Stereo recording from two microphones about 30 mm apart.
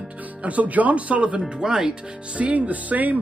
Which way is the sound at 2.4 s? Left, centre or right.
Right.